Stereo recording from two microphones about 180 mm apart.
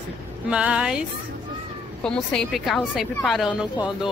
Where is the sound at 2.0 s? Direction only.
5° left (ahead or behind).